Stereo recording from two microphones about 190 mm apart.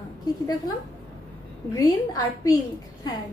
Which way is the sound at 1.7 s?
20° left (ahead or behind).